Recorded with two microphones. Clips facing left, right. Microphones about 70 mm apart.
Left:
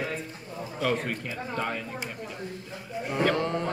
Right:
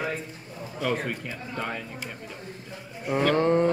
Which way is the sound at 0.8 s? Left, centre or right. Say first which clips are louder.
Even; centre.